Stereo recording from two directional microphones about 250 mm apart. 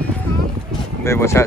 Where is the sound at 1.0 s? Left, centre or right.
Centre.